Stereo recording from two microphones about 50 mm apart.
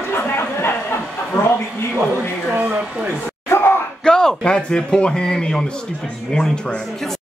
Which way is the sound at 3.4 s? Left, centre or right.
Left.